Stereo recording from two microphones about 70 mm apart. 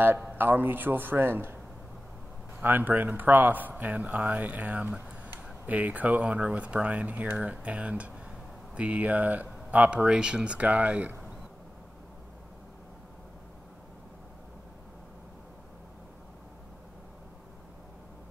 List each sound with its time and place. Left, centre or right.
0.0 s speech: right
2.6 s speech: right